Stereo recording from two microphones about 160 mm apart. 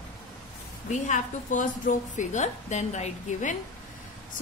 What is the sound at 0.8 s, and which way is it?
A woman's voice, 50° left (ahead or behind).